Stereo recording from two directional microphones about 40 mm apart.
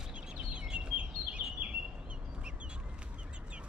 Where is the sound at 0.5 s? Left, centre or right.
Right.